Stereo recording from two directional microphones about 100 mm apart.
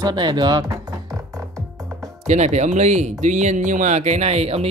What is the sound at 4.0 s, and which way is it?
Speech, 90° right.